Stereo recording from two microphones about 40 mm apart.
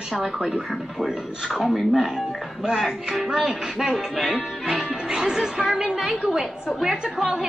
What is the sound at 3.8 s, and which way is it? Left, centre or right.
A woman's voice, centre.